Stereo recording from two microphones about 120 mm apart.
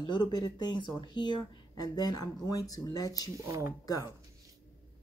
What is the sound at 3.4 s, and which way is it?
Speech, 25° right (ahead or behind).